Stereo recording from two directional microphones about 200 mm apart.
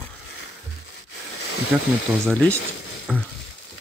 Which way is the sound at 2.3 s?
5° left (ahead or behind).